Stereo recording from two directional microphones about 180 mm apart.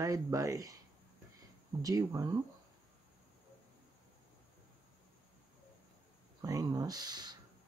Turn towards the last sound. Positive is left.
turn(degrees=-25)  # may be behind; listen again after turning